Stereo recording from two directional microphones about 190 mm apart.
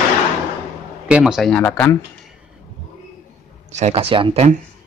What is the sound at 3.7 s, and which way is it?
Speech, 30° right (ahead or behind).